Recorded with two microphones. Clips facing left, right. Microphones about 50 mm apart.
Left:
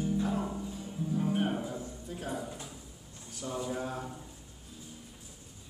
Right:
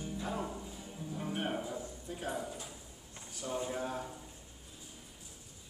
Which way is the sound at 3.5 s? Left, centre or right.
Right.